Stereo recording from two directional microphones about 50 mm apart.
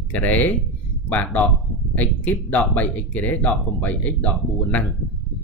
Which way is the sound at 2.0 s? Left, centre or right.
Left.